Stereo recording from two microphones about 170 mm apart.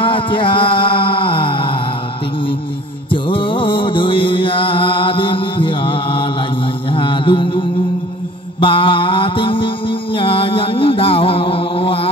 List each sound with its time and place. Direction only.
0.0 s music: 30° left (ahead or behind)
3.1 s music: 30° left (ahead or behind)
6.9 s mantra: 30° left (ahead or behind)
8.5 s music: 30° left (ahead or behind)